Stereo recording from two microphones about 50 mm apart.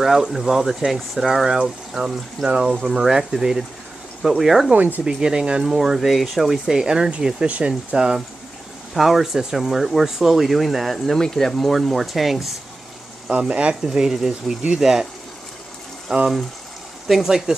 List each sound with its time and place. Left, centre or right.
0.0 s speech: centre
2.8 s speech: centre
4.7 s speech: right
5.0 s speech: centre
8.9 s speech: centre
13.4 s speech: right
13.8 s speech: centre
16.1 s speech: centre